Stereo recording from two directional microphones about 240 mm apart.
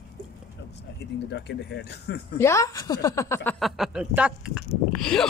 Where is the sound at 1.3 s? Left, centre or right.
Left.